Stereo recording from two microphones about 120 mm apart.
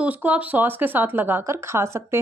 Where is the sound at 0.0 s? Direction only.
10° right (ahead or behind).